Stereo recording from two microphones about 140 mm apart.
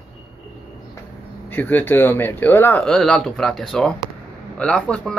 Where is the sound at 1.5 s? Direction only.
15° left (ahead or behind).